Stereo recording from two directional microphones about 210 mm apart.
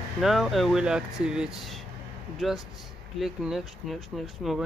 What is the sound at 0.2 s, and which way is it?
Speech, centre (ahead or behind).